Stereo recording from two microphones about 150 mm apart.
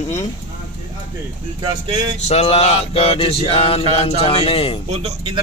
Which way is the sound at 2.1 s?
45° left (ahead or behind).